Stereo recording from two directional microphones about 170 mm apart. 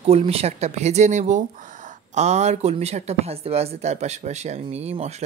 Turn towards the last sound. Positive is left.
turn(degrees=-40)  # may be behind; listen again after turning